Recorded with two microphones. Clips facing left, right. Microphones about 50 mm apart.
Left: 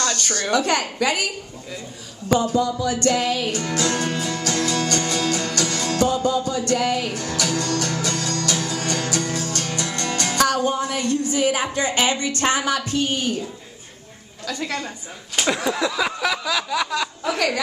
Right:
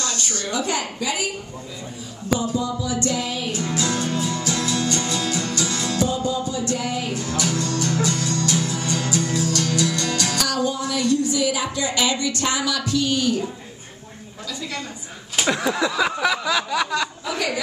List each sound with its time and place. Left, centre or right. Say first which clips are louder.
0.0 s a woman's voice: left 3 dB; left
2.2 s speech: left 4 dB; left
3.5 s music: left 1 dB; left
14.5 s speech: left 4 dB; left
15.3 s a sound: even; centre